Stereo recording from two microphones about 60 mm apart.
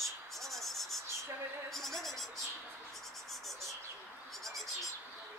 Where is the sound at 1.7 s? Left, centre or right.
Centre.